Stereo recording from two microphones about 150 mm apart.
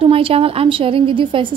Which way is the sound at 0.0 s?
40° right (ahead or behind).